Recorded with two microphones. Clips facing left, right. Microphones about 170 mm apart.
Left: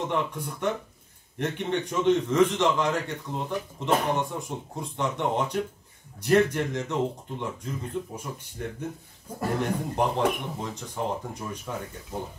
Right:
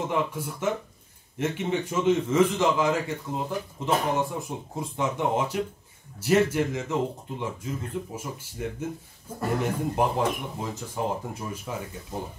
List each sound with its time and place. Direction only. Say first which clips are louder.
0.1 s a man's voice: right 1 dB; 5° right (ahead or behind)